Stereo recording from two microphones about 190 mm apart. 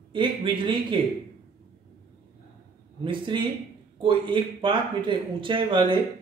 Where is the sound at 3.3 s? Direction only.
25° right (ahead or behind).